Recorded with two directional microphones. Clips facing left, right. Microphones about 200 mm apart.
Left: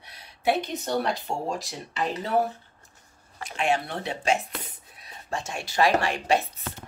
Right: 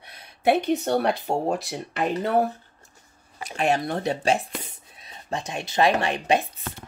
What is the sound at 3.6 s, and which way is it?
Speech, 40° right (ahead or behind).